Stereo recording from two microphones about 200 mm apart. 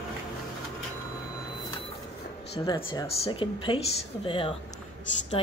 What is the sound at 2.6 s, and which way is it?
A woman's voice, 20° left (ahead or behind).